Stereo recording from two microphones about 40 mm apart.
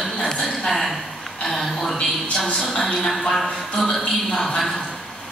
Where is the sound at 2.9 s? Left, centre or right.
Centre.